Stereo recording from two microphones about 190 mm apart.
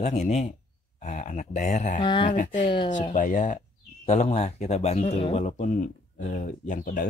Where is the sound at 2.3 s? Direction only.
40° left (ahead or behind).